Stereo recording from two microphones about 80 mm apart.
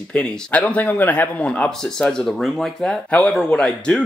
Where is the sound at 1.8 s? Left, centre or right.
Centre.